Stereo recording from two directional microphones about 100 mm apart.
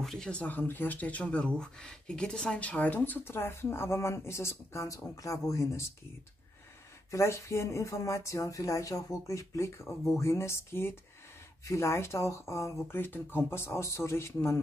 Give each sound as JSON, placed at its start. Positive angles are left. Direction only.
{"t": 0.0, "sound": "speech", "side_deg": 5}
{"t": 7.1, "sound": "speech", "side_deg": 30}